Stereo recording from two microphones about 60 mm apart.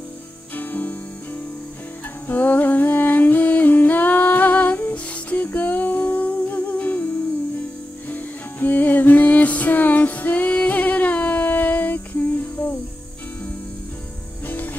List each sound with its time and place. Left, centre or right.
0.6 s music: left
2.2 s music: left
8.1 s music: left